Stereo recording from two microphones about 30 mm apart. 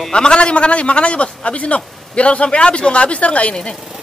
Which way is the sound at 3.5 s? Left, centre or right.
Left.